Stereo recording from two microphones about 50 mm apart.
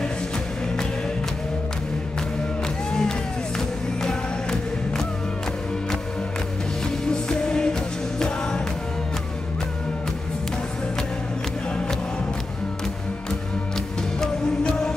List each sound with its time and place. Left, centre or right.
2.9 s music: centre
7.2 s music: centre
14.7 s music: centre